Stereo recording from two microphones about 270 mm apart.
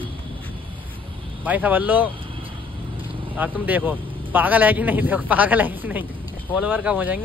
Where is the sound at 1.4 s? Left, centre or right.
Centre.